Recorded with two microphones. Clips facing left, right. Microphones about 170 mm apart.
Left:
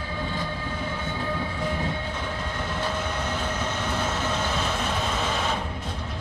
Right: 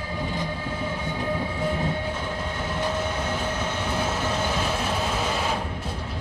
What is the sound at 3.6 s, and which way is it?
Train, 10° right (ahead or behind).